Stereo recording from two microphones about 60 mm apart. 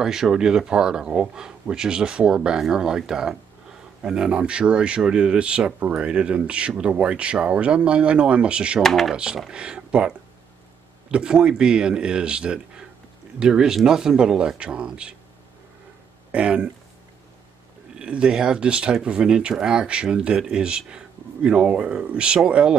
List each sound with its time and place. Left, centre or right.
0.0 s speech: centre
8.8 s speech: centre
9.1 s speech: centre
16.3 s speech: centre
17.9 s speech: centre